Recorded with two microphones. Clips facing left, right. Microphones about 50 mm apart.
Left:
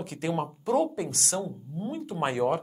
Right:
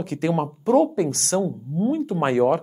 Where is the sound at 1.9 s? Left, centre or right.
Right.